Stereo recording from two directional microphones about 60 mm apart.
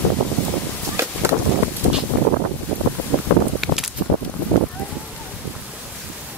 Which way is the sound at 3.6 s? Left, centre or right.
Centre.